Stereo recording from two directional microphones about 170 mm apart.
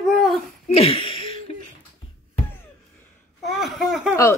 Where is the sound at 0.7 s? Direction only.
35° left (ahead or behind).